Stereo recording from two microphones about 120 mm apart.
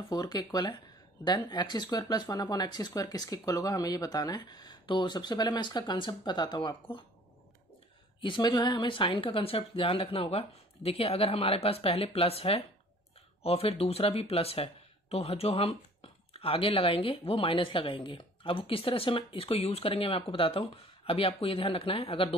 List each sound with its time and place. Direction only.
0.1 s speech: 35° left (ahead or behind)
8.2 s speech: 40° left (ahead or behind)